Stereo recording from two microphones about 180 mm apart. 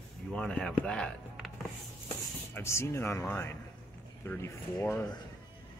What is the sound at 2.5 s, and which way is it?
A man's voice, 15° left (ahead or behind).